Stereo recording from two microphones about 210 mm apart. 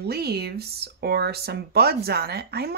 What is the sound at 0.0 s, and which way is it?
Speech, 50° right (ahead or behind).